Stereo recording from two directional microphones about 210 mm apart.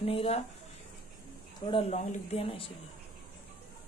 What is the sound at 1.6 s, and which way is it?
Speech, 25° left (ahead or behind).